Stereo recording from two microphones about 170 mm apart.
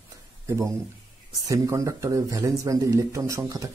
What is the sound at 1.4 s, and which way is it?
Speech, 20° right (ahead or behind).